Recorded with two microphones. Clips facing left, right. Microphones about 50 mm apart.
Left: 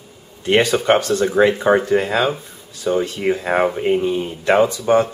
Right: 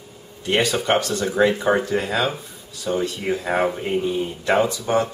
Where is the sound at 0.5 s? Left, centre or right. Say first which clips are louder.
Left 5 dB; left.